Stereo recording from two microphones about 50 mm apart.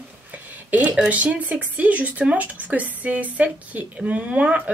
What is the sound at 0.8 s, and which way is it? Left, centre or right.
Speech, centre.